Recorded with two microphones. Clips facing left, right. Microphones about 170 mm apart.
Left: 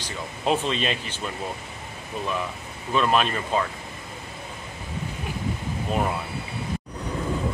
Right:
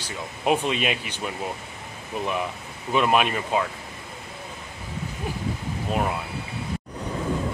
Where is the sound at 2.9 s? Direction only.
15° right (ahead or behind).